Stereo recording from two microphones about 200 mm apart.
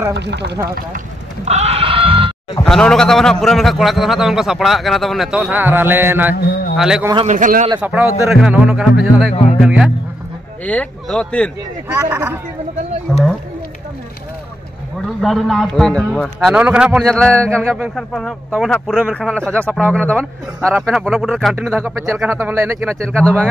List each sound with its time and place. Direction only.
0.1 s speech: 60° right (ahead or behind)
0.7 s sheep: 40° right (ahead or behind)
2.6 s a man's voice: 5° left (ahead or behind)
7.2 s a man's voice: 40° right (ahead or behind)
7.8 s a man's voice: 10° right (ahead or behind)
9.3 s speech: 35° left (ahead or behind)
9.6 s a man's voice: 5° right (ahead or behind)
11.9 s speech: 10° right (ahead or behind)
15.0 s a man's voice: centre (ahead or behind)
20.1 s a man's voice: 10° right (ahead or behind)
21.6 s speech: 10° right (ahead or behind)
23.0 s a man's voice: 5° left (ahead or behind)